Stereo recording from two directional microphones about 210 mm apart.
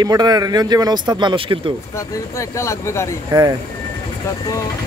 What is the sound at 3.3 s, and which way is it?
Speech, 15° right (ahead or behind).